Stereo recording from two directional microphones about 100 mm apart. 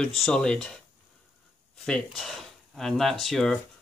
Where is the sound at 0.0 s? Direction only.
5° left (ahead or behind).